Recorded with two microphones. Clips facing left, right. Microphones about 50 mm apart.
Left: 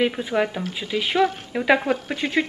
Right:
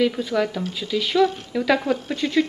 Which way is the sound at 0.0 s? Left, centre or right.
Left.